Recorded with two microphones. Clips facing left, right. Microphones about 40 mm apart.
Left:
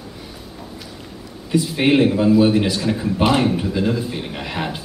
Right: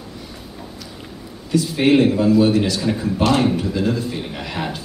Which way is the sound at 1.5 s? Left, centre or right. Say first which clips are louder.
Right 1 dB; centre.